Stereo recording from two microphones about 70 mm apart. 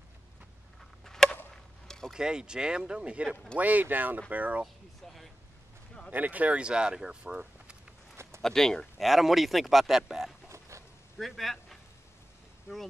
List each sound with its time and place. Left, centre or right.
1.0 s a sound: centre
2.1 s speech: centre
6.1 s speech: right
8.4 s speech: centre
10.7 s a sound: right
11.1 s a man's voice: centre